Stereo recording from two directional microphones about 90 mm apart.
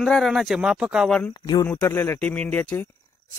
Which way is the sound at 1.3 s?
45° left (ahead or behind).